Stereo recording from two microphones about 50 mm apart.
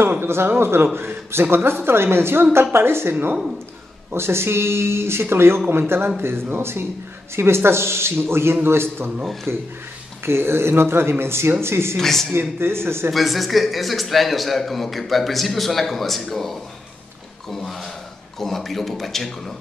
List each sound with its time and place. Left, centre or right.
0.5 s speech: right
12.0 s speech: centre
12.4 s speech: right
13.1 s a man's voice: centre